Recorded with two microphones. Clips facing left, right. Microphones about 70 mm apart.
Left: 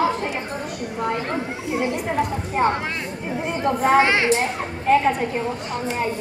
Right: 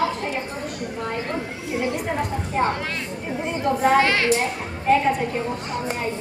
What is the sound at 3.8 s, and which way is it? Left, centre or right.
Speech, left.